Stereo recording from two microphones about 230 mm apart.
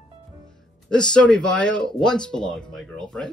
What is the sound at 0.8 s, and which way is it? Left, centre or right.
Speech, centre.